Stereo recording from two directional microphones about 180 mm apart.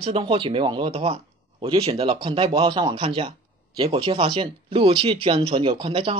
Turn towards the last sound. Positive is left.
turn(degrees=-30)  # may be behind; listen again after turning